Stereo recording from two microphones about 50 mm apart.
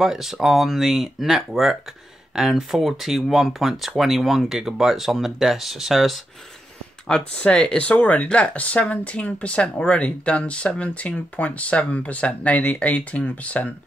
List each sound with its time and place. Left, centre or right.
0.0 s speech: centre
7.3 s speech: left